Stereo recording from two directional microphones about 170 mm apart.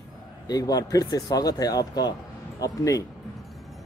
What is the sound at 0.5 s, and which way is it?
Speech, 20° left (ahead or behind).